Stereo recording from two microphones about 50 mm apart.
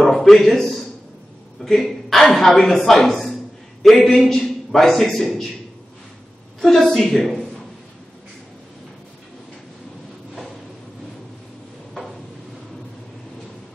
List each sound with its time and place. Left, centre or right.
0.0 s a sound: centre
1.6 s a man's voice: centre
6.6 s a man's voice: centre